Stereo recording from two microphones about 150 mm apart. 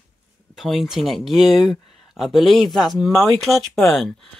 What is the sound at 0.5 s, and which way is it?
Speech, centre (ahead or behind).